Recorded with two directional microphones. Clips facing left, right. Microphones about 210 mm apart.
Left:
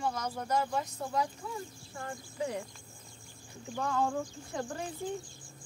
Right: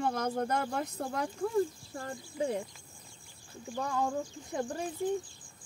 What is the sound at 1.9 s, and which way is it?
Speech, 35° right (ahead or behind).